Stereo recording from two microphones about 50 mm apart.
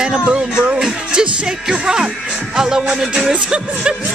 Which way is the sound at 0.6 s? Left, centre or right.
Centre.